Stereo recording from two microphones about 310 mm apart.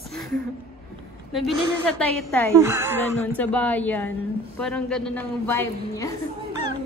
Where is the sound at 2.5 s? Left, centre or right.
Centre.